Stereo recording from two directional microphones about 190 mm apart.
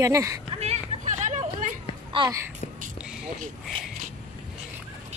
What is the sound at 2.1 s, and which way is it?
Speech, 25° right (ahead or behind).